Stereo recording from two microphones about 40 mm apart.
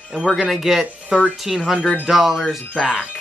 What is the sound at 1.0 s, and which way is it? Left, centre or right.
Speech, right.